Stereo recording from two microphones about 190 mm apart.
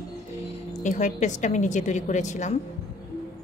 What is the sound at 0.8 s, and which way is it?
A woman's voice, 40° left (ahead or behind).